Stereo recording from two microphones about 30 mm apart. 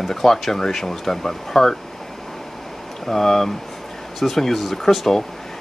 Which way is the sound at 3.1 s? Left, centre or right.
Centre.